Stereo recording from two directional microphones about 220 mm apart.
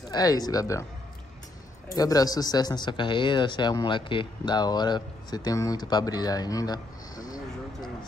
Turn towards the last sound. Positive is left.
turn(degrees=15)  # may be behind; listen again after turning